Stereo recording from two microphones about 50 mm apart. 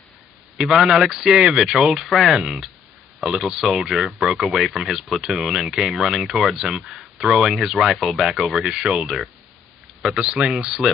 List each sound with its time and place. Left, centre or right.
0.6 s speech: centre
6.8 s speech: centre
7.3 s speech: centre
8.6 s speech: centre
8.9 s speech: centre
10.0 s speech: centre